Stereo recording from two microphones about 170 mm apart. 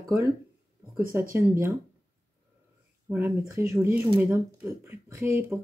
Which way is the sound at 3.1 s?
15° right (ahead or behind).